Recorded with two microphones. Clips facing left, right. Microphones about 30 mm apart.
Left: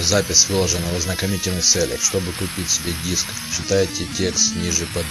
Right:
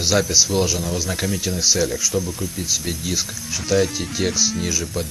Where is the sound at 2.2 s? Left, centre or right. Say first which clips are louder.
Left 1 dB; left.